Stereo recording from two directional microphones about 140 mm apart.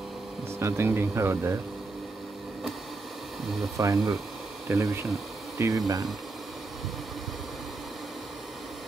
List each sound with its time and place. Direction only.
0.6 s speech: 20° right (ahead or behind)
3.7 s speech: 25° right (ahead or behind)
5.6 s speech: 25° right (ahead or behind)